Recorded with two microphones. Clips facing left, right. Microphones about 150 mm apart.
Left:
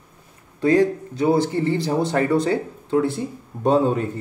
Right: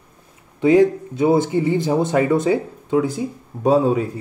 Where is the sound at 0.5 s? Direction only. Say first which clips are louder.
Right 4 dB; 20° right (ahead or behind).